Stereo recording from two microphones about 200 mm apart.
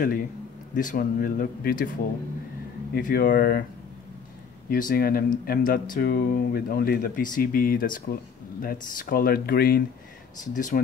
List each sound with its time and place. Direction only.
0.7 s speech: 40° left (ahead or behind)
2.9 s speech: 45° left (ahead or behind)
4.6 s speech: 45° left (ahead or behind)